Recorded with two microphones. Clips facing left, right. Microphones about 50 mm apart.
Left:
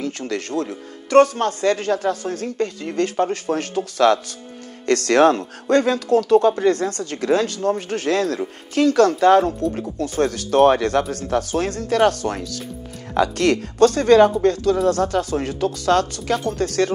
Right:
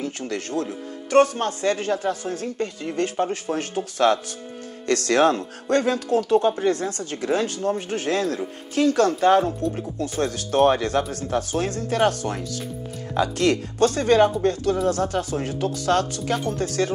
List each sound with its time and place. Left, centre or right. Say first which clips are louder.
0.2 s speech: left 2 dB; left